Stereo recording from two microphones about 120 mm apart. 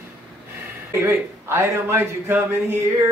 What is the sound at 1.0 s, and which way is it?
A man's voice, 20° right (ahead or behind).